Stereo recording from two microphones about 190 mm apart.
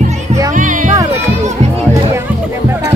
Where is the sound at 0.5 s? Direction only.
45° right (ahead or behind).